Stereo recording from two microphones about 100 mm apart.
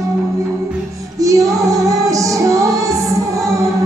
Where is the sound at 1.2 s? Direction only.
35° right (ahead or behind).